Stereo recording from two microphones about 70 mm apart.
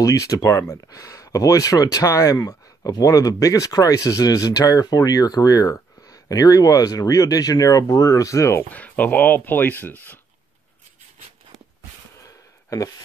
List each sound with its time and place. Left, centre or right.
0.0 s speech: left
2.3 s speech: left
8.7 s speech: left
12.6 s a sound: left